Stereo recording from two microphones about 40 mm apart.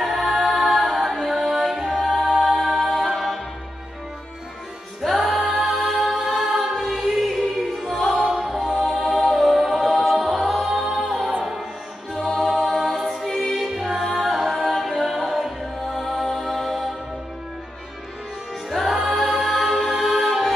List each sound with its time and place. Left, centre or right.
0.0 s music: centre
5.0 s choir: centre
7.9 s music: centre
8.3 s music: centre
12.4 s music: centre
18.7 s music: centre
19.5 s music: centre
19.9 s music: centre